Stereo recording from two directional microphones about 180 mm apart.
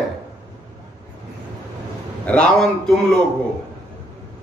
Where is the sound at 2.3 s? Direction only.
5° left (ahead or behind).